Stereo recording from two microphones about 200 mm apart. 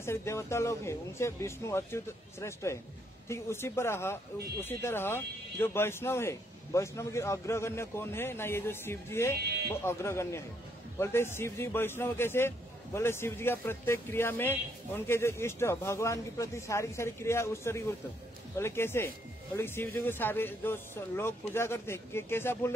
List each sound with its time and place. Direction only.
0.0 s a man's voice: 15° left (ahead or behind)